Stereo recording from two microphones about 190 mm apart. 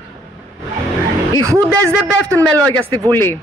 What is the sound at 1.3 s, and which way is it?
Speech, 15° right (ahead or behind).